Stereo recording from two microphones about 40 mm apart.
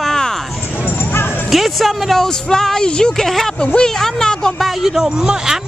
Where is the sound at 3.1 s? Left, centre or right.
Centre.